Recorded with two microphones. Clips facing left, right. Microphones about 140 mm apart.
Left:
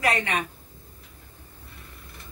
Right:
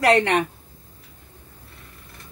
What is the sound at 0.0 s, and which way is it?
Speech, 75° right (ahead or behind).